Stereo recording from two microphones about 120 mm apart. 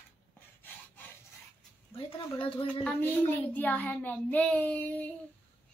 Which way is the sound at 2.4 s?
45° left (ahead or behind).